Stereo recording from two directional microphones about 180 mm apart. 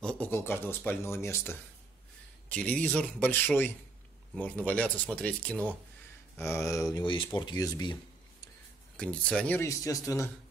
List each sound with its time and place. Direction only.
0.0 s a sound: 5° left (ahead or behind)
2.5 s speech: 5° left (ahead or behind); by 8.5 s 20° left (ahead or behind)
8.9 s speech: 5° left (ahead or behind)